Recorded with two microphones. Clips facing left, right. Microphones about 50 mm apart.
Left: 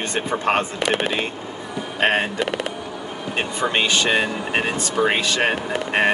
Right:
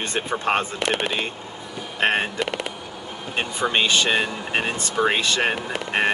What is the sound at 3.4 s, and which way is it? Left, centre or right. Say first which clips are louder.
Speech: even; centre.